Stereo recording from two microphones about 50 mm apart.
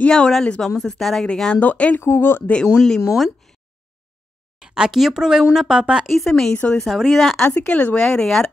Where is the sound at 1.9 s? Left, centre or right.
Left.